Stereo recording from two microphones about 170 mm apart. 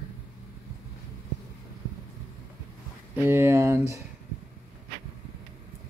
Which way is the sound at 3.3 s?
15° right (ahead or behind).